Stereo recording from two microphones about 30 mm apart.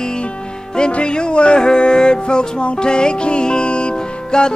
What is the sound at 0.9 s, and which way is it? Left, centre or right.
Music, left.